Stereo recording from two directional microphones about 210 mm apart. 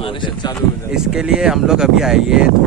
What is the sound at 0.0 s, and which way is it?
Speech, 25° left (ahead or behind).